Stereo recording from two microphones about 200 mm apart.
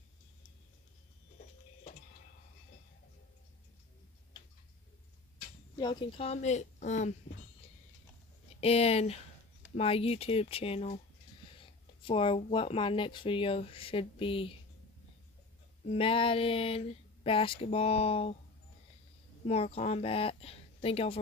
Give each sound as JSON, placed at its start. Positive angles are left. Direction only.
{"t": 5.8, "sound": "a woman's voice", "side_deg": 20}
{"t": 8.5, "sound": "a woman's voice", "side_deg": 30}
{"t": 15.9, "sound": "speech", "side_deg": 25}
{"t": 19.4, "sound": "speech", "side_deg": 30}